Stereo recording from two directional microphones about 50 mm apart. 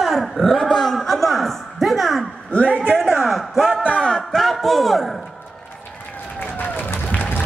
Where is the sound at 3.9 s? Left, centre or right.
Centre.